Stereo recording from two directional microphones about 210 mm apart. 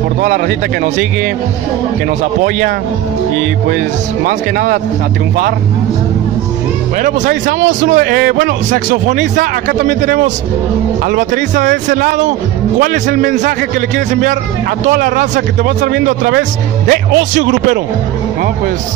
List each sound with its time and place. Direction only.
3.3 s a man's voice: 45° right (ahead or behind)
7.0 s a man's voice: 35° right (ahead or behind); by 17.5 s 55° right (ahead or behind)